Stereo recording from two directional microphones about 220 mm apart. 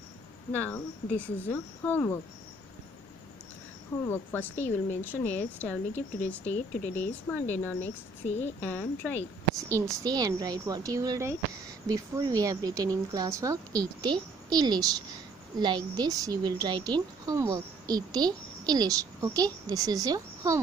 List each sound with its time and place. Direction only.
0.5 s a woman's voice: 5° left (ahead or behind)
4.0 s a woman's voice: 10° left (ahead or behind)
9.6 s speech: 15° right (ahead or behind)